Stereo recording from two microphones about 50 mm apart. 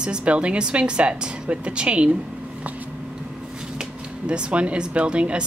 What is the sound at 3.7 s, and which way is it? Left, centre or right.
Speech, right.